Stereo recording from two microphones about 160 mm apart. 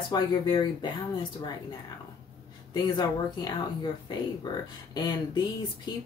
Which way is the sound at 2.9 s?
25° left (ahead or behind).